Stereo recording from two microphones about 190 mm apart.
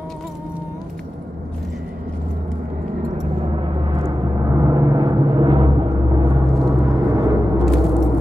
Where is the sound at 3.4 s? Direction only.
25° right (ahead or behind).